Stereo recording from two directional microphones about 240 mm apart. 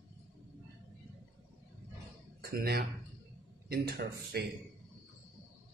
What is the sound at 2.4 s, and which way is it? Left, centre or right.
Speech, right.